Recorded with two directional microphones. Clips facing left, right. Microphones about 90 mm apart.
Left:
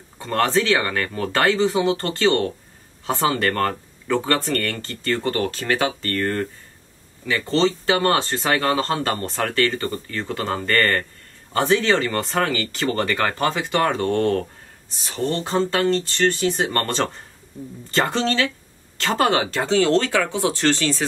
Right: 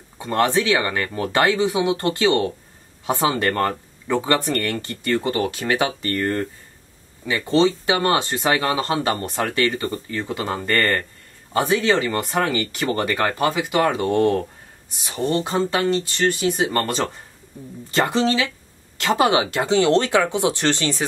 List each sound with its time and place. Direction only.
0.2 s speech: 15° right (ahead or behind)